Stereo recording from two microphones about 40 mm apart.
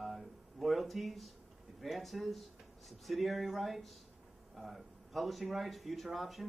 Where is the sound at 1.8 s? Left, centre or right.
Centre.